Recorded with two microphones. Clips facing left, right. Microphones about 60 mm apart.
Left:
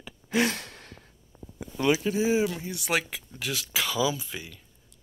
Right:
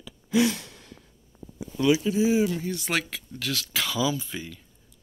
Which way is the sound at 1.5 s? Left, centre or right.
Left.